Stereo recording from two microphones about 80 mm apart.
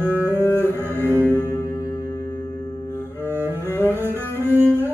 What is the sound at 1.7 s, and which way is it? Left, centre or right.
Music, left.